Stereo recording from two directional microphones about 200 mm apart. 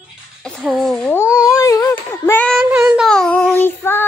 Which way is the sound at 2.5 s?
10° right (ahead or behind).